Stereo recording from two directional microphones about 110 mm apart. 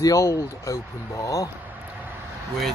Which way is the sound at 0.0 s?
30° left (ahead or behind).